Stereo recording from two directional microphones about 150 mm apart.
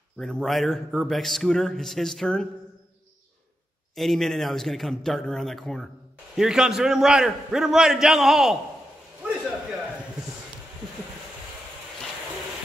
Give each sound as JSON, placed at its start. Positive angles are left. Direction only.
{"t": 0.2, "sound": "a man's voice", "side_deg": 0}
{"t": 3.9, "sound": "a man's voice", "side_deg": 0}